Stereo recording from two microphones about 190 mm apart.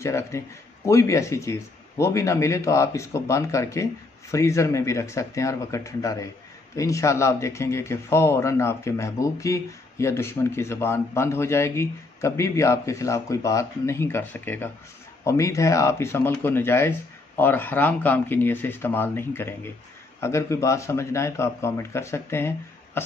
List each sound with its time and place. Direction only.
0.0 s speech: 15° left (ahead or behind)
23.0 s music: 10° left (ahead or behind)